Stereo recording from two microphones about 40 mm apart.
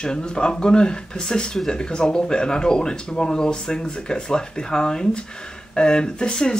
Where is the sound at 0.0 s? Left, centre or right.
Left.